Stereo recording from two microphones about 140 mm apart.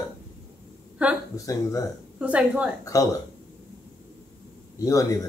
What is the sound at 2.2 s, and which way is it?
Female singing, 10° right (ahead or behind).